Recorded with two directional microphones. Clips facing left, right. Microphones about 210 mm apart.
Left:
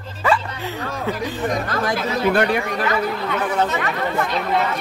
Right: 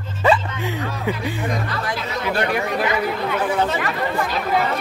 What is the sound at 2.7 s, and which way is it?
Speech, 10° right (ahead or behind).